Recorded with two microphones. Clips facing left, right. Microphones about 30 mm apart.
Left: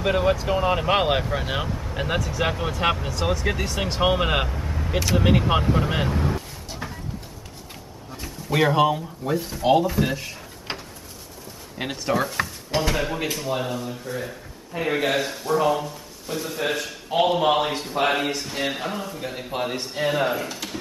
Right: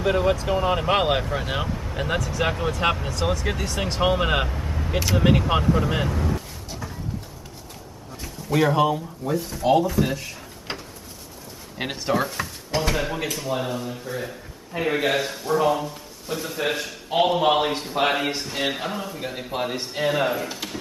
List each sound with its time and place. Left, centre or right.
0.0 s speech: centre
6.0 s speech: left
8.2 s speech: centre
11.8 s speech: centre